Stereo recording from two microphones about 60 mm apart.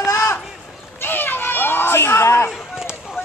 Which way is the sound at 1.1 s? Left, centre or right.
Left.